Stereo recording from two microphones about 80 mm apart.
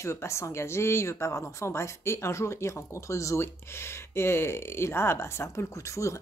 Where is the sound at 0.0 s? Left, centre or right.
Left.